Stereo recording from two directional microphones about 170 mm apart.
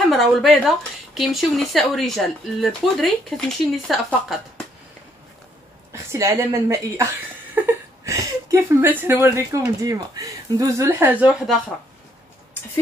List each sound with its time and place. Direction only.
0.1 s speech: centre (ahead or behind)
5.9 s a woman's voice: 15° right (ahead or behind)